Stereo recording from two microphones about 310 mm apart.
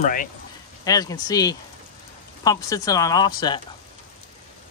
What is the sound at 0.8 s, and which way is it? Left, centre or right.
Speech, centre.